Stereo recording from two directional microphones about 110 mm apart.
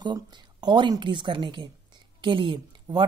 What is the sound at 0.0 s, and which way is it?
Speech, 40° right (ahead or behind).